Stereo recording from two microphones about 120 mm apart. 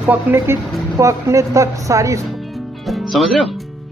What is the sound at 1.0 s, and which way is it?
Speech, 25° right (ahead or behind).